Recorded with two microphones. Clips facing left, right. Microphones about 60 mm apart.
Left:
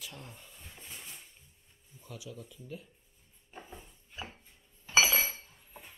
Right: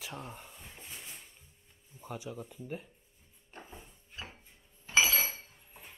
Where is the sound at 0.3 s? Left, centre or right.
Right.